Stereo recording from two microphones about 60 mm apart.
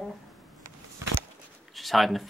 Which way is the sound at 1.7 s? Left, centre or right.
Centre.